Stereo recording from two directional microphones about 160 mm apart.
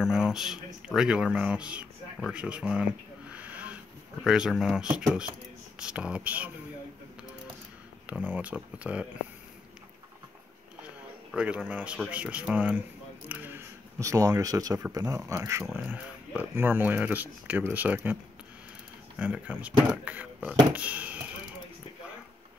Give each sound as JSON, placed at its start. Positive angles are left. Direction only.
{"t": 0.0, "sound": "speech", "side_deg": -5}
{"t": 8.1, "sound": "speech", "side_deg": -10}
{"t": 11.3, "sound": "speech", "side_deg": -10}
{"t": 19.1, "sound": "speech", "side_deg": -10}